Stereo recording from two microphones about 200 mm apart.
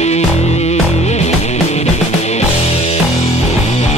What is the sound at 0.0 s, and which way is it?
Music, 35° left (ahead or behind).